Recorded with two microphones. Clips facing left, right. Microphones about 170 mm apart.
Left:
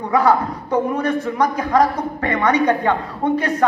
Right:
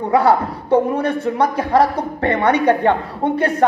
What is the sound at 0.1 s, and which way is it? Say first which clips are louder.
A man's voice: right 1 dB; 30° right (ahead or behind).